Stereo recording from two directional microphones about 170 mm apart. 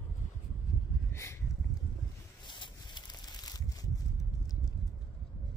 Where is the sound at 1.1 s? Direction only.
15° left (ahead or behind).